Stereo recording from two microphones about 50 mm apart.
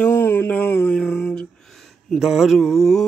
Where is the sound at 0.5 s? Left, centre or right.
Left.